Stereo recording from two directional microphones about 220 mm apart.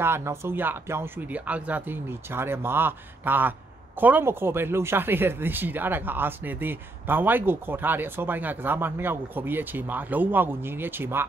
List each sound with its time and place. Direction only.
0.0 s speech: 10° right (ahead or behind)